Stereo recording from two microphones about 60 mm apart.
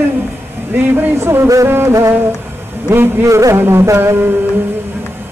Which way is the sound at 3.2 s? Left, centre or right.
Right.